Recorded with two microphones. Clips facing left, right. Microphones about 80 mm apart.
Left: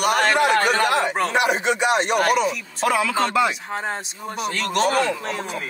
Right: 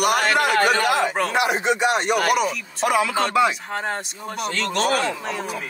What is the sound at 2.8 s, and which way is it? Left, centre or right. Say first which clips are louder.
Speech: right 1 dB; right.